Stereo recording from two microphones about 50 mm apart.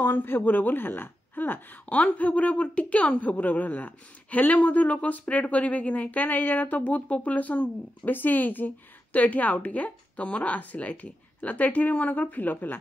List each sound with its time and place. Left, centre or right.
0.0 s speech: left
2.0 s speech: left